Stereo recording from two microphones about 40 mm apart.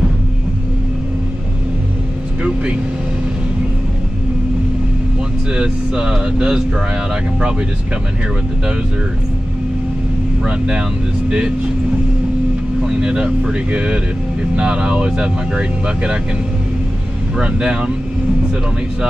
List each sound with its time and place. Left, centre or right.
2.4 s vehicle: right
5.5 s speech: right
10.4 s speech: right
12.8 s speech: right
17.4 s speech: right